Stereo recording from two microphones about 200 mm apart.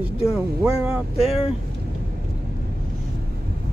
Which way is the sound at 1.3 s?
30° left (ahead or behind).